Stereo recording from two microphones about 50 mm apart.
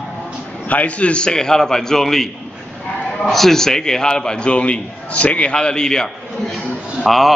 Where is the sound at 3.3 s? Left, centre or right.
Centre.